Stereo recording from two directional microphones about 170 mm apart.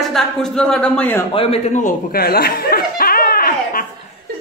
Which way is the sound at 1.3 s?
35° left (ahead or behind).